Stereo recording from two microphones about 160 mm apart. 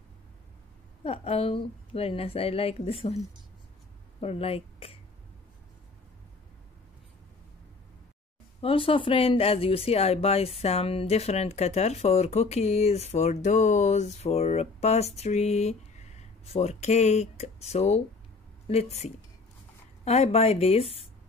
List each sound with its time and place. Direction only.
1.0 s speech: 35° left (ahead or behind)
4.2 s speech: 40° left (ahead or behind)
8.5 s speech: 35° left (ahead or behind)